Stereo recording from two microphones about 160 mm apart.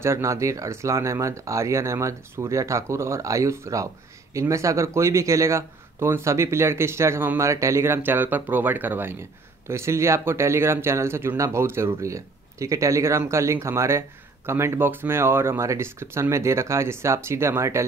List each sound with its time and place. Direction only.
0.0 s speech: 20° right (ahead or behind)